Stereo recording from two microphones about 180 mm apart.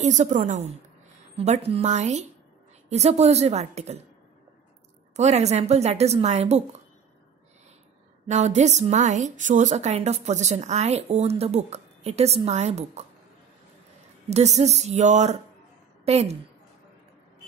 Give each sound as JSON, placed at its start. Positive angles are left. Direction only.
{"t": 0.0, "sound": "a woman's voice", "side_deg": -40}
{"t": 5.1, "sound": "a woman's voice", "side_deg": -40}
{"t": 8.3, "sound": "a woman's voice", "side_deg": -40}
{"t": 14.3, "sound": "a woman's voice", "side_deg": -40}